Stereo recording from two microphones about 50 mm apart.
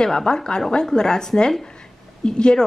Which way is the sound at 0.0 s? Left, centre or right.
Centre.